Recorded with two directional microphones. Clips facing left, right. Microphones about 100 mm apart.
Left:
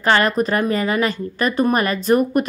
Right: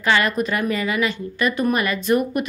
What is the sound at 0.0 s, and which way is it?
A woman's voice, 40° left (ahead or behind).